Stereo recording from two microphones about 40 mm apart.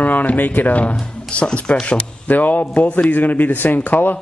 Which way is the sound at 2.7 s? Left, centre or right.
Left.